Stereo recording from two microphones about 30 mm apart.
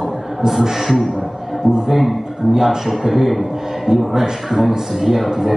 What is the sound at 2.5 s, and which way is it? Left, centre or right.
Speech, centre.